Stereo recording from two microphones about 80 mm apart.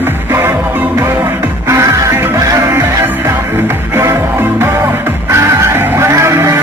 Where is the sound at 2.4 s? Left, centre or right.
Right.